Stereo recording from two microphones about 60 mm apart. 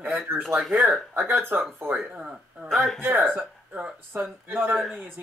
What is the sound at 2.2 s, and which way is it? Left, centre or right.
Speech, centre.